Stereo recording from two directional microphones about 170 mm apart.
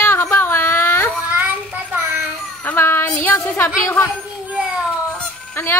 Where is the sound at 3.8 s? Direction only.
20° left (ahead or behind).